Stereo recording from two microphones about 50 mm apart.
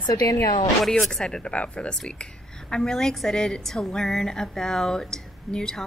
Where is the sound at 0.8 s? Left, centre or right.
Centre.